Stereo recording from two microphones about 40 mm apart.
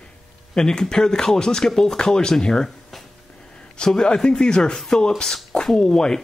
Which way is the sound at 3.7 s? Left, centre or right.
Centre.